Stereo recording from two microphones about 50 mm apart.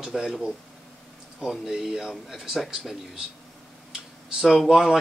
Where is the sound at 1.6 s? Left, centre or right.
Centre.